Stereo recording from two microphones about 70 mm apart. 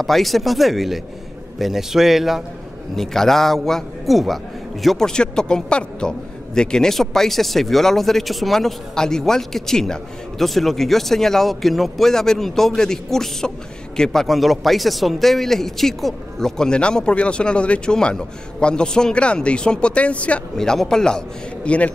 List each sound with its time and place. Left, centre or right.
0.0 s a man's voice: centre
20.5 s a man's voice: centre